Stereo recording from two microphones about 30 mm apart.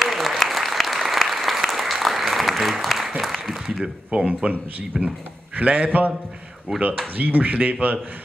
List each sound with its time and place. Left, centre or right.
0.0 s applause: centre
3.2 s a sound: centre
4.1 s speech: right
4.9 s a man's voice: right
5.9 s speech: right
6.7 s speech: centre
7.2 s speech: right